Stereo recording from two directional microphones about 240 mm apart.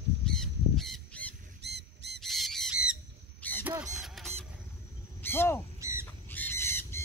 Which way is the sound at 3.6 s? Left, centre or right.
Centre.